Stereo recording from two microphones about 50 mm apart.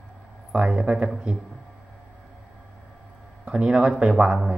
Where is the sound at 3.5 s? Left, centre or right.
Centre.